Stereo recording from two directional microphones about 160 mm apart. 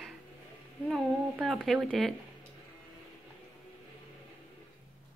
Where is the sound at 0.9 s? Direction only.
Centre (ahead or behind).